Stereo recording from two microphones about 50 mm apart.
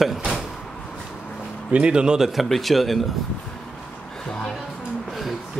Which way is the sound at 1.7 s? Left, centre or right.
Right.